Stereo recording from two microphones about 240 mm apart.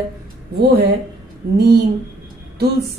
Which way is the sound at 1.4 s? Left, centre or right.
Right.